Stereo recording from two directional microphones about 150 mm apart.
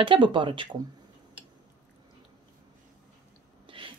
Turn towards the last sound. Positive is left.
turn(degrees=-35)  # may be behind; listen again after turning